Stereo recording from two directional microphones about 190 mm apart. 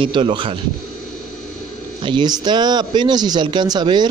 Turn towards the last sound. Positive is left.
turn(degrees=-25)  # may be behind; listen again after turning